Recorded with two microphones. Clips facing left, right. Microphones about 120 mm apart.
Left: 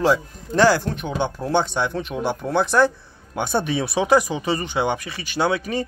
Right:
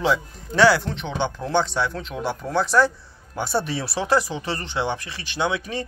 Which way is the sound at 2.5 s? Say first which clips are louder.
Left 1 dB; 55° left (ahead or behind).